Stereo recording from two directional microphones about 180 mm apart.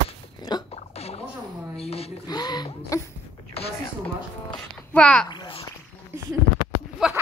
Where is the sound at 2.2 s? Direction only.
25° left (ahead or behind).